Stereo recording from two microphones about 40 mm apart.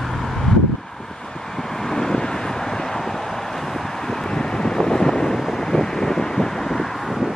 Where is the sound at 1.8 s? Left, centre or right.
Centre.